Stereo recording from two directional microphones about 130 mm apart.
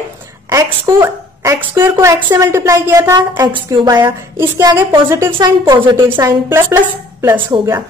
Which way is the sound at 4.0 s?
20° right (ahead or behind).